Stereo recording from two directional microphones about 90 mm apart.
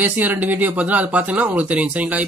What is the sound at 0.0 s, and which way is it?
Speech, 20° right (ahead or behind).